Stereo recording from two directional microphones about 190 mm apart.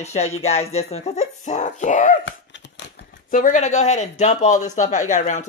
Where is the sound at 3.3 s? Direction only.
40° left (ahead or behind).